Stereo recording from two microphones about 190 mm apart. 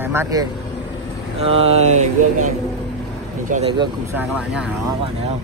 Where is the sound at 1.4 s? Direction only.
30° right (ahead or behind).